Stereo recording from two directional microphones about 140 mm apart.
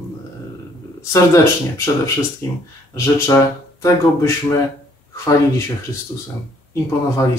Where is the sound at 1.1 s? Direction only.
20° left (ahead or behind).